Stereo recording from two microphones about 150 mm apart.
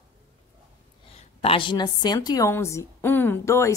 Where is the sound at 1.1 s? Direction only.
40° left (ahead or behind); by 3.7 s 20° left (ahead or behind).